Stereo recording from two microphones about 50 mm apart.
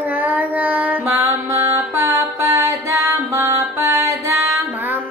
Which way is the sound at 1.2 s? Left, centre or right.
Right.